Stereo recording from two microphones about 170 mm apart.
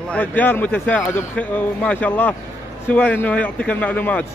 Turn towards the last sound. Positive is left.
turn(degrees=10)  # may be behind; listen again after turning